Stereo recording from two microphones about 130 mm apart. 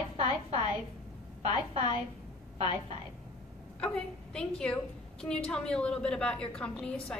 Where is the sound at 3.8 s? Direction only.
5° left (ahead or behind).